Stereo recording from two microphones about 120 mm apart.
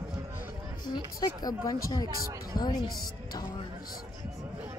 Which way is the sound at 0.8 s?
35° left (ahead or behind).